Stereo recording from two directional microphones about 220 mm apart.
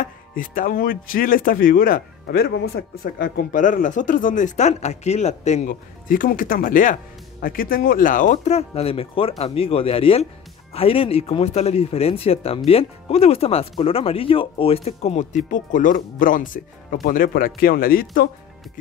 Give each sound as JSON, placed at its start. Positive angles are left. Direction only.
{"t": 0.0, "sound": "speech", "side_deg": 40}